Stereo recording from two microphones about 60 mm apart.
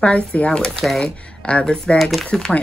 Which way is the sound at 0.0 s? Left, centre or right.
Left.